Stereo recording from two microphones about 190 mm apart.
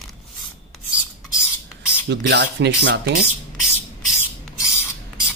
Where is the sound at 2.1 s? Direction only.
65° right (ahead or behind).